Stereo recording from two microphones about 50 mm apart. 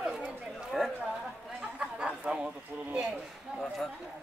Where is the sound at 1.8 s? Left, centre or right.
Right.